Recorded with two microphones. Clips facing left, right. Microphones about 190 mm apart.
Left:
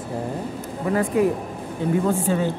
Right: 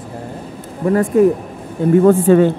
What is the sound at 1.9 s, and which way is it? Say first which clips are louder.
Speech: right 12 dB; 60° right (ahead or behind).